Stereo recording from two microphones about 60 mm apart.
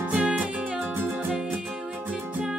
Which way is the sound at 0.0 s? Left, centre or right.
Right.